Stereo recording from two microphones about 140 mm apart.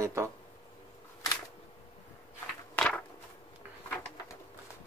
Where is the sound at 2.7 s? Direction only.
10° left (ahead or behind).